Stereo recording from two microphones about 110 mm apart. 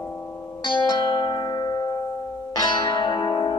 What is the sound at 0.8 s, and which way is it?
Music, 45° left (ahead or behind).